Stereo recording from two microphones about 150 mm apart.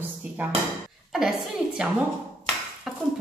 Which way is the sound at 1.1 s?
5° right (ahead or behind).